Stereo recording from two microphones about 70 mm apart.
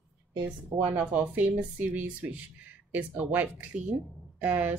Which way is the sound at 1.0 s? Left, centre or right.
Right.